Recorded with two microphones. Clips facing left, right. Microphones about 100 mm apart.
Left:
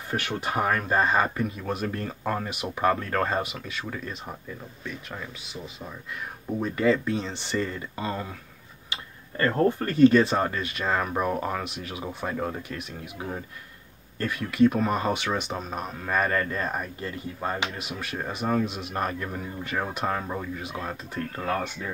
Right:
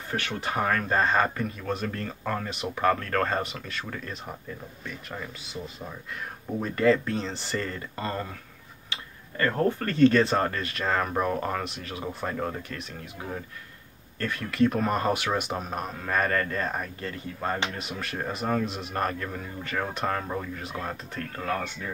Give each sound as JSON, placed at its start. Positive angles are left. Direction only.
{"t": 0.1, "sound": "speech", "side_deg": 15}
{"t": 8.9, "sound": "speech", "side_deg": 30}
{"t": 14.2, "sound": "speech", "side_deg": 5}
{"t": 19.2, "sound": "speech", "side_deg": 15}
{"t": 21.4, "sound": "speech", "side_deg": 20}